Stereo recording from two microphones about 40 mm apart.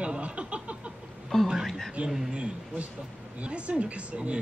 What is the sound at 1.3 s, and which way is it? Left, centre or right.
Speech, centre.